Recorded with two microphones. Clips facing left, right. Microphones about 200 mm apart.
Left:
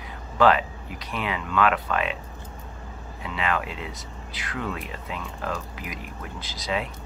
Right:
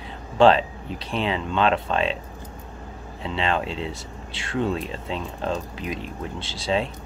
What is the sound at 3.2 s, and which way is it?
Speech, 30° right (ahead or behind).